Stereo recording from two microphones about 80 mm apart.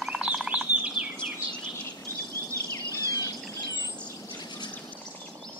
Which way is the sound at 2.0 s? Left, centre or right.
Left.